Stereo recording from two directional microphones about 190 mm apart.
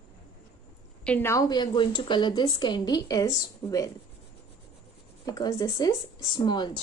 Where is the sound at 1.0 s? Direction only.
10° left (ahead or behind).